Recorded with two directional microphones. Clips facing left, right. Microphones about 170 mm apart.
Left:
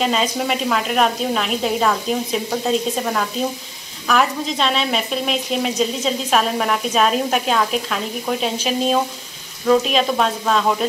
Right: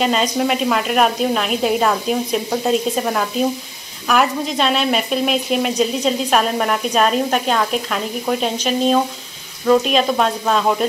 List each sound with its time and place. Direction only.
0.0 s speech: centre (ahead or behind)